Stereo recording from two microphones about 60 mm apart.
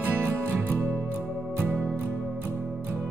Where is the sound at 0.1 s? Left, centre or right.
Right.